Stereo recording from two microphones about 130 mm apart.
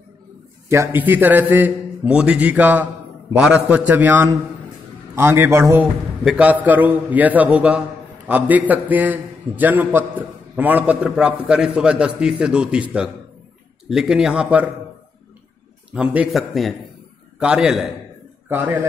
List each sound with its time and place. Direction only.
0.7 s a man's voice: 20° right (ahead or behind)
15.9 s a man's voice: 10° right (ahead or behind)
18.5 s a man's voice: 15° right (ahead or behind)